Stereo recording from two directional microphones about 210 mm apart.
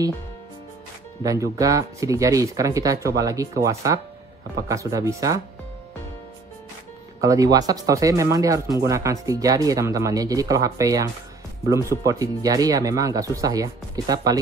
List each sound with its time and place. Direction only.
1.2 s speech: 15° right (ahead or behind)
7.2 s speech: 15° right (ahead or behind)